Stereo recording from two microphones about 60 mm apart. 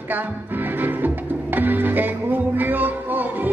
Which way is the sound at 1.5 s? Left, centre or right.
Right.